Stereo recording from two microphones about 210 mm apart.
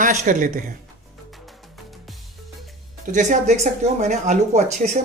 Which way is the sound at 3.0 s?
35° right (ahead or behind).